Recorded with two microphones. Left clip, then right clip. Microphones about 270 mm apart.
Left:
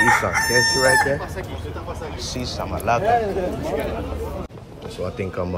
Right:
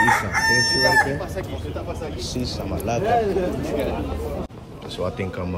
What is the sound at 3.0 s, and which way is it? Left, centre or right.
Speech, centre.